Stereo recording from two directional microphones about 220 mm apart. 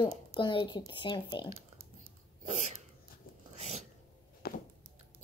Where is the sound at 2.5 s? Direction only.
30° right (ahead or behind).